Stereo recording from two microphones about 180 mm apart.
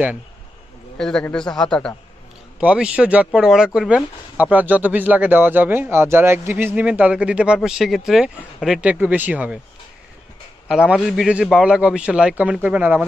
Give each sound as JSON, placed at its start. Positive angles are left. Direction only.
{"t": 0.9, "sound": "a man's voice", "side_deg": 5}
{"t": 2.6, "sound": "speech", "side_deg": -5}
{"t": 10.7, "sound": "a man's voice", "side_deg": -5}